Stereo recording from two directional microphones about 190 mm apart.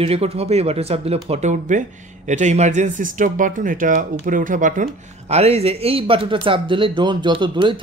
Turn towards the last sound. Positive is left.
turn(degrees=-25)  # may be behind; listen again after turning